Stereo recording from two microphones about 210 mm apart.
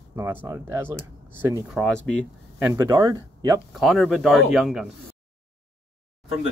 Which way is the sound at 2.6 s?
15° right (ahead or behind).